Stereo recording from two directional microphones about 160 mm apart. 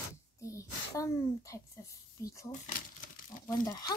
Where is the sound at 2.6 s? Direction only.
60° left (ahead or behind).